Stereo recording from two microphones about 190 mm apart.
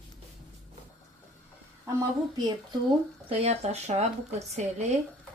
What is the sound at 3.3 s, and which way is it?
A woman's voice, 35° right (ahead or behind).